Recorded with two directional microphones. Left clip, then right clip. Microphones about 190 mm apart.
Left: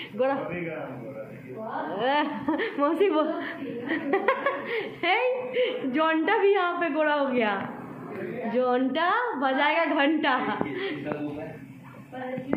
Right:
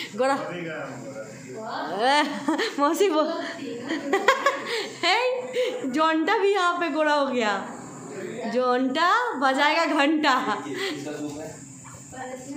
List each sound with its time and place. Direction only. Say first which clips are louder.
0.2 s speech: right 2 dB; 35° right (ahead or behind)
2.0 s a woman's voice: right 4 dB; 35° right (ahead or behind)